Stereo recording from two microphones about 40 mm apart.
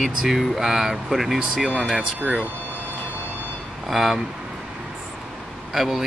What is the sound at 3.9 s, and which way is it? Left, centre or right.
Speech, centre.